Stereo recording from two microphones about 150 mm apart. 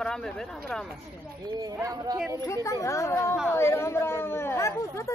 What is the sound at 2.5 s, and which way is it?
Speech, 20° left (ahead or behind).